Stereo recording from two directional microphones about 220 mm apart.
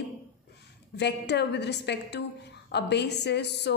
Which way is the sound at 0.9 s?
50° left (ahead or behind).